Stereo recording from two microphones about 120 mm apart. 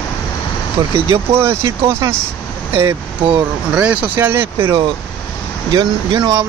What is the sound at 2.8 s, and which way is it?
Speech, 40° right (ahead or behind).